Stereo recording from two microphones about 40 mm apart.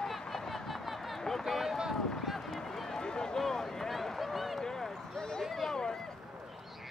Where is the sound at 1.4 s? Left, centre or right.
Centre.